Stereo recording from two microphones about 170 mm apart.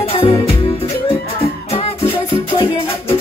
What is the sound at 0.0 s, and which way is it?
Music, 35° left (ahead or behind).